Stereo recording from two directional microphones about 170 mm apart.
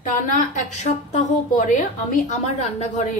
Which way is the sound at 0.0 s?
50° left (ahead or behind).